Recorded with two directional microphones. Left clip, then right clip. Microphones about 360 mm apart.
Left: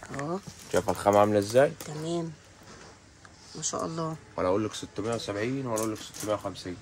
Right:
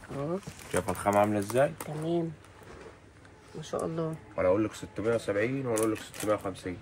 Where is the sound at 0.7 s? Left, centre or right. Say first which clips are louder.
Left 4 dB; left.